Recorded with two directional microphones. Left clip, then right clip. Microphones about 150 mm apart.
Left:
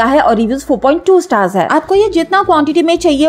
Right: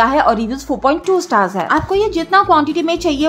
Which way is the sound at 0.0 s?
25° left (ahead or behind).